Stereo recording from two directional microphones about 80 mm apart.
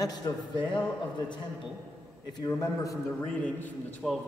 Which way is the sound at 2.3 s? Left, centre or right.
Left.